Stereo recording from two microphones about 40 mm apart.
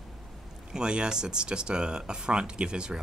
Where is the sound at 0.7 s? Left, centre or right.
Right.